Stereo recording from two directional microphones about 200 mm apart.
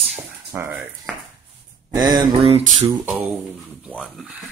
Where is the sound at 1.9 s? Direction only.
20° right (ahead or behind).